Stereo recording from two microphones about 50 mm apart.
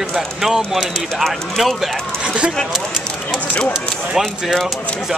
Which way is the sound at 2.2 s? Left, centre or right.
Centre.